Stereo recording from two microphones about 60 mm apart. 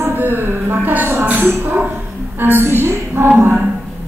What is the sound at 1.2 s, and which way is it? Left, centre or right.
Music, right.